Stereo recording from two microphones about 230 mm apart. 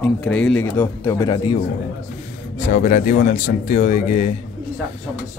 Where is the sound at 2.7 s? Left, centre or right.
Left.